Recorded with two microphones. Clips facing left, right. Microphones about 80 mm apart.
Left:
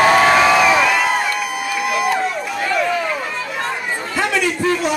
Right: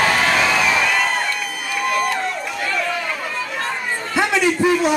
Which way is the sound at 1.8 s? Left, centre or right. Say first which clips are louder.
Left 1 dB; centre.